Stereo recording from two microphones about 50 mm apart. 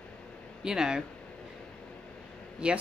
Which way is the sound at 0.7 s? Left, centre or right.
Centre.